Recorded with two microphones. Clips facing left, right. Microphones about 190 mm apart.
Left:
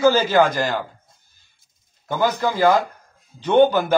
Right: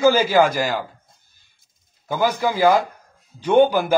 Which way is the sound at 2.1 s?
10° right (ahead or behind).